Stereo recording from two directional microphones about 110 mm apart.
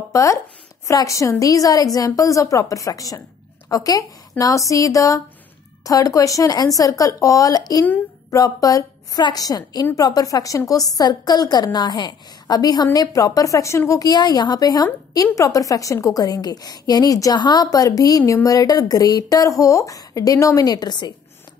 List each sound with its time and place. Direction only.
0.1 s a woman's voice: 30° left (ahead or behind)